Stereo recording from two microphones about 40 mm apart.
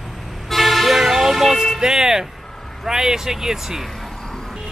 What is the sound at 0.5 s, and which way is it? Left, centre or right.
Vehicle, centre.